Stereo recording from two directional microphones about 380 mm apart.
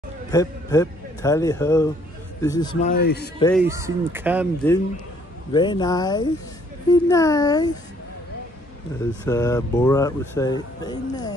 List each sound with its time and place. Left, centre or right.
0.3 s a man's voice: centre; by 3.3 s left
3.3 s speech: centre
3.6 s speech: centre
5.5 s speech: centre
9.2 s speech: centre